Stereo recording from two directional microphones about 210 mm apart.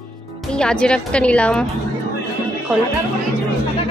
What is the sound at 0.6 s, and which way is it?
A woman's voice, 5° left (ahead or behind).